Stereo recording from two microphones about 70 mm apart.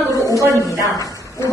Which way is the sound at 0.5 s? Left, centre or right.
Left.